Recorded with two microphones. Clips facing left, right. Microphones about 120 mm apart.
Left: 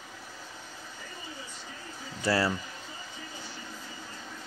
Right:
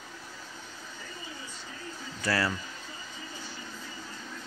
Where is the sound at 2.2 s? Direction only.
25° left (ahead or behind).